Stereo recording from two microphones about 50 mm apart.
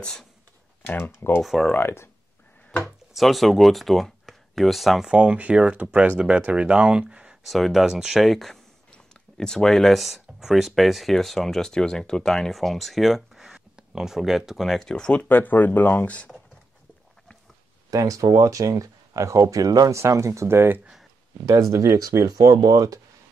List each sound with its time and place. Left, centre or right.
0.9 s speech: left
1.4 s speech: centre
1.8 s speech: left
3.2 s speech: centre
5.1 s speech: right
7.4 s speech: centre
14.7 s speech: centre
15.2 s speech: left
18.4 s speech: right
21.5 s speech: right